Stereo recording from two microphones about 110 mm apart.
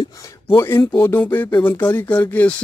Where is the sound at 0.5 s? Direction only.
20° left (ahead or behind).